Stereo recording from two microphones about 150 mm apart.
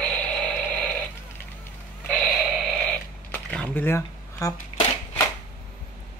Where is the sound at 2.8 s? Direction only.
10° left (ahead or behind).